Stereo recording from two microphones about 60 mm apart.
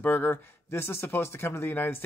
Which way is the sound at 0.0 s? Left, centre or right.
Left.